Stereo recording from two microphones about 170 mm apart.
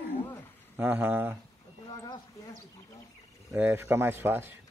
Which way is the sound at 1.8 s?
20° left (ahead or behind).